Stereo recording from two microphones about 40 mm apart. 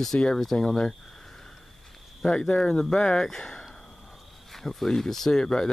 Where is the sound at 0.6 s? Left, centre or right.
Centre.